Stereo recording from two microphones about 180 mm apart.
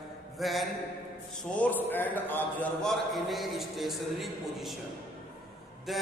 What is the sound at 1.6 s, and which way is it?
A man's voice, 10° left (ahead or behind).